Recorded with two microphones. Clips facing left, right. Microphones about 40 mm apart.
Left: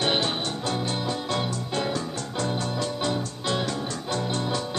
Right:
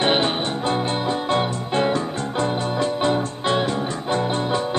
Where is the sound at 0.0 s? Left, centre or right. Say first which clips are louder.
Right 5 dB; right.